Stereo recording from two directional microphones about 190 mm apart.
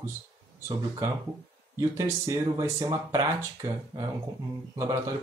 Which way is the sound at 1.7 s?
15° right (ahead or behind).